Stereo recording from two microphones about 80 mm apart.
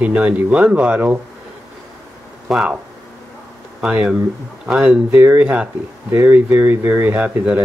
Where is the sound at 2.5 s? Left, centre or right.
Centre.